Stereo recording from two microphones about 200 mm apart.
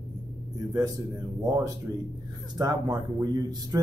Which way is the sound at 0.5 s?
15° right (ahead or behind).